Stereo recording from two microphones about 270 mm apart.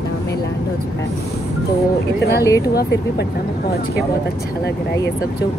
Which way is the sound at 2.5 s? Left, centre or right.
Centre.